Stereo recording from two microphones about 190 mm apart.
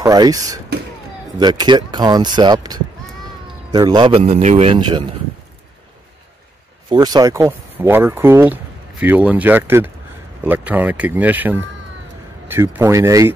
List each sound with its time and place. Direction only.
0.0 s speech: 20° right (ahead or behind)
6.9 s speech: 20° right (ahead or behind)